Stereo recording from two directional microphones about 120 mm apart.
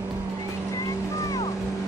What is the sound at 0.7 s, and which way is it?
Boat, 25° left (ahead or behind).